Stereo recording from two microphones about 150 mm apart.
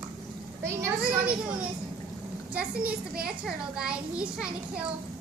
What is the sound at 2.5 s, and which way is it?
A child's voice, 10° right (ahead or behind).